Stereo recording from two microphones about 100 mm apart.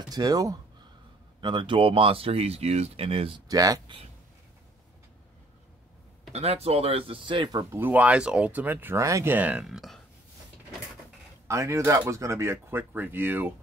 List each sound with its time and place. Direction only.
0.1 s speech: 40° right (ahead or behind)
1.4 s speech: 55° right (ahead or behind); by 3.3 s 75° right (ahead or behind)
3.4 s speech: 35° right (ahead or behind)
6.3 s speech: 90° right; by 7.6 s 50° right (ahead or behind)
7.7 s speech: 20° right (ahead or behind)
9.3 s speech: 15° right (ahead or behind)
9.7 s speech: centre (ahead or behind)
11.4 s speech: 30° right (ahead or behind)